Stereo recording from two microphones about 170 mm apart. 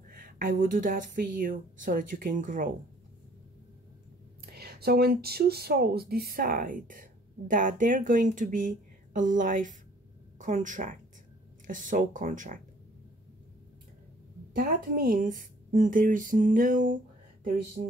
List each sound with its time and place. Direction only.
0.1 s speech: 50° right (ahead or behind)
4.5 s speech: 65° right (ahead or behind); by 12.5 s 50° right (ahead or behind)
14.5 s speech: 55° right (ahead or behind)